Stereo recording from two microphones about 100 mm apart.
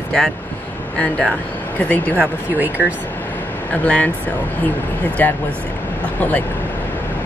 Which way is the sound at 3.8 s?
15° left (ahead or behind).